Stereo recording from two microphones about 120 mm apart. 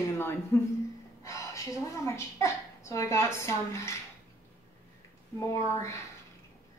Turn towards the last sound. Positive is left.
turn(degrees=25)  # may be behind; listen again after turning